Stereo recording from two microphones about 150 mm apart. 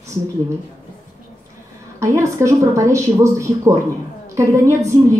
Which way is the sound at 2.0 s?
20° right (ahead or behind).